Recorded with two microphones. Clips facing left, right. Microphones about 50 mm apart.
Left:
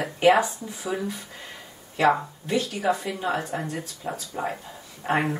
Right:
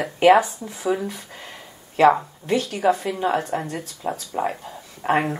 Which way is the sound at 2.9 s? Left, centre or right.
Right.